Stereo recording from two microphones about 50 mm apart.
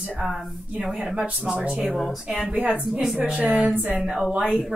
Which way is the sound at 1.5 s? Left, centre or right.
Right.